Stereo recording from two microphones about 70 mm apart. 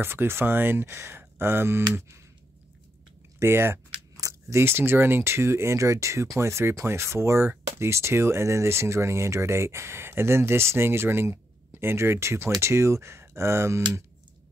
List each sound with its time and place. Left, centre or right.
0.0 s speech: right
3.3 s speech: right
4.2 s a sound: right
4.6 s speech: right